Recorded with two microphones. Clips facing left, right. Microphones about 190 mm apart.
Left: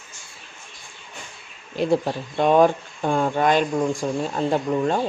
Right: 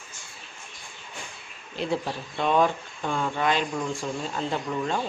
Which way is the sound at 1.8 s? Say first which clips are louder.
Left 7 dB; 45° left (ahead or behind).